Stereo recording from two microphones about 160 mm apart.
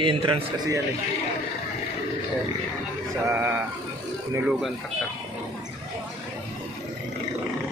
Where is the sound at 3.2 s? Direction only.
15° right (ahead or behind).